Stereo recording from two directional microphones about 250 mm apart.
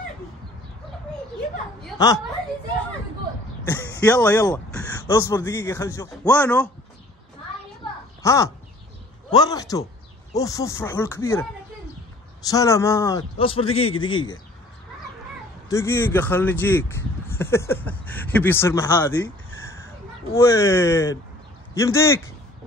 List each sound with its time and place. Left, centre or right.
2.0 s a woman's voice: centre
3.6 s speech: centre
8.2 s speech: centre
12.4 s speech: centre
15.7 s speech: centre
20.3 s speech: centre